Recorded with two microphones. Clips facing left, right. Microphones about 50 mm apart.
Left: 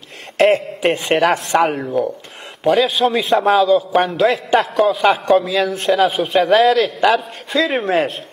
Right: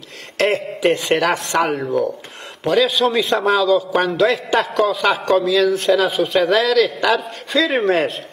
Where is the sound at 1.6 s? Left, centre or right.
Centre.